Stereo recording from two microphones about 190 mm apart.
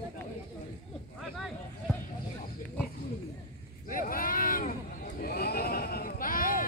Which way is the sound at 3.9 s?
45° left (ahead or behind).